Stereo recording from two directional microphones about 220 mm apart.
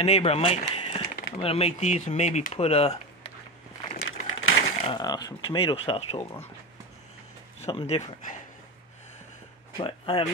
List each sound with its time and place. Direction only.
0.0 s speech: 30° left (ahead or behind)
4.3 s a sound: 70° left (ahead or behind)
4.8 s speech: 20° left (ahead or behind)
7.6 s speech: 25° left (ahead or behind)
9.8 s speech: 25° left (ahead or behind)